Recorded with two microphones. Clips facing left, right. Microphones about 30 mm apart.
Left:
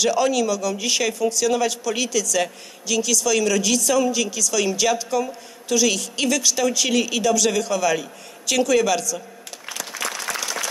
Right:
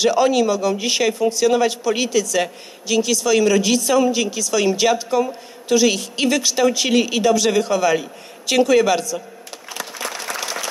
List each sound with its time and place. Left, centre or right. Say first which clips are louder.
0.0 s a man's voice: right 4 dB; right
9.7 s applause: even; right